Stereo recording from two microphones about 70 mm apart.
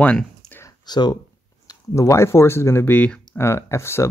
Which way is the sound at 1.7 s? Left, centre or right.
Left.